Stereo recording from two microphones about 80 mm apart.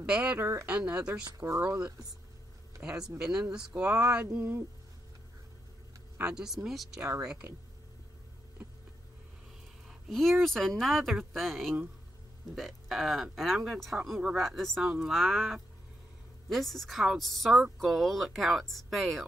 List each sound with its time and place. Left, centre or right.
0.0 s speech: centre
0.4 s speech: right
0.7 s speech: centre
1.4 s speech: right
2.8 s speech: centre
4.4 s speech: right
6.2 s speech: centre
9.8 s a sound: centre
10.4 s speech: centre